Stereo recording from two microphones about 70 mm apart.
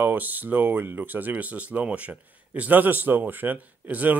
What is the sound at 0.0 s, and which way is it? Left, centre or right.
Speech, right.